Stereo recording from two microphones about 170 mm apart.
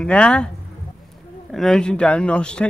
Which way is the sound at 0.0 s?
5° left (ahead or behind).